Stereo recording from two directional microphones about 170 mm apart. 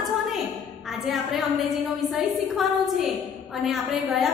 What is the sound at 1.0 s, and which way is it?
A woman's voice, centre (ahead or behind).